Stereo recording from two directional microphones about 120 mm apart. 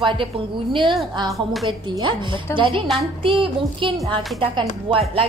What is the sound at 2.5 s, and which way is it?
Speech, 20° left (ahead or behind).